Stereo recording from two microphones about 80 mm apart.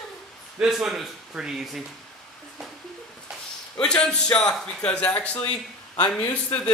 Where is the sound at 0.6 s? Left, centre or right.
Centre.